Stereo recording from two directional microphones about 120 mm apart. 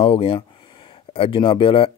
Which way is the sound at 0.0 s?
55° left (ahead or behind).